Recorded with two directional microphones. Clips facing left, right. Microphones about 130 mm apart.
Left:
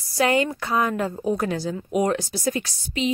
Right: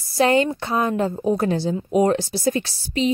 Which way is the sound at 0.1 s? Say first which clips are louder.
Right 3 dB; 30° right (ahead or behind).